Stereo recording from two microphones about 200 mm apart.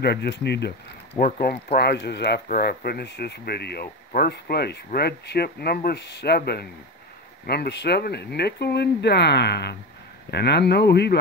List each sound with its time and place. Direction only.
0.0 s speech: 55° left (ahead or behind)